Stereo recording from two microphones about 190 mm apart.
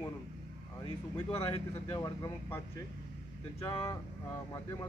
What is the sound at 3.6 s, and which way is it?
Speech, 20° left (ahead or behind).